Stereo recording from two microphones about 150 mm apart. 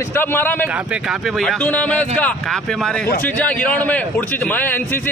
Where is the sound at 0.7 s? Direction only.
5° right (ahead or behind).